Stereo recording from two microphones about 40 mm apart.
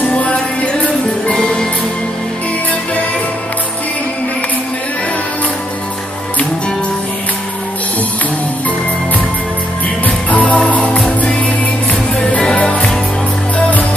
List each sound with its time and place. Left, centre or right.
0.1 s music: left
1.2 s music: centre
10.0 s music: left